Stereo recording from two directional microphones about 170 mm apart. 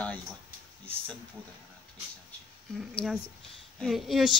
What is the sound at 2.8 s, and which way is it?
A woman's voice, centre (ahead or behind).